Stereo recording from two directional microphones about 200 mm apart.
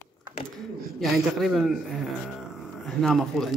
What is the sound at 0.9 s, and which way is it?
Speech, centre (ahead or behind).